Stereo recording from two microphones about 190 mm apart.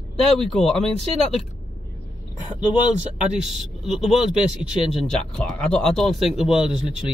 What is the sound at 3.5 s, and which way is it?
Speech, centre (ahead or behind).